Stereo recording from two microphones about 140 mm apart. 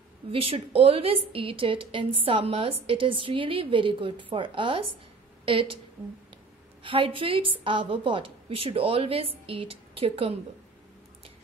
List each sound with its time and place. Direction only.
0.3 s a woman's voice: 40° right (ahead or behind)
6.8 s a woman's voice: 40° right (ahead or behind)